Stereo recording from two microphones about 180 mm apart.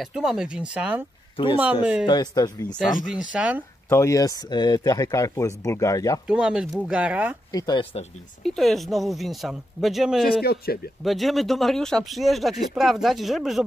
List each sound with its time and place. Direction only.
0.0 s speech: 5° right (ahead or behind)
1.3 s speech: 30° left (ahead or behind)
1.6 s speech: 5° right (ahead or behind)
2.0 s speech: 20° left (ahead or behind)
3.3 s speech: 5° right (ahead or behind)
3.9 s speech: 15° left (ahead or behind)
6.2 s speech: 5° right (ahead or behind)
7.5 s speech: 20° left (ahead or behind)
8.5 s speech: centre (ahead or behind)
10.4 s speech: 60° left (ahead or behind)
11.1 s speech: centre (ahead or behind)